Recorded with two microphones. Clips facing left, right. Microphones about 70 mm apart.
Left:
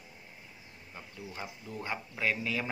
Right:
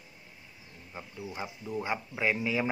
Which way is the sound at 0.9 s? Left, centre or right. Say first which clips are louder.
Right 4 dB; centre.